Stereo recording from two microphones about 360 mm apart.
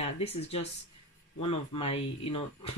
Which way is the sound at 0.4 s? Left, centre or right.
Centre.